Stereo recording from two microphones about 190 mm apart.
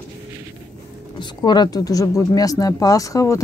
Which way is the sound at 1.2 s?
25° left (ahead or behind).